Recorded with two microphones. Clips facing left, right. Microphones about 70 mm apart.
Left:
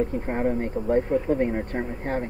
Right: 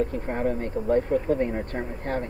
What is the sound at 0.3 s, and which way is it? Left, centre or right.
Speech, left.